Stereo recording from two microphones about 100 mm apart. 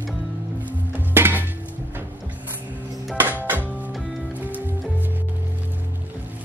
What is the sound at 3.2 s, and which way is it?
Music, 20° right (ahead or behind).